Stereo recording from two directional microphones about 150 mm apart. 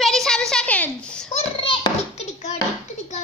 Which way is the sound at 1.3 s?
35° left (ahead or behind).